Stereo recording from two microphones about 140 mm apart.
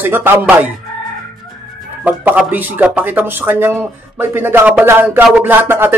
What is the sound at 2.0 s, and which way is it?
Speech, 10° right (ahead or behind).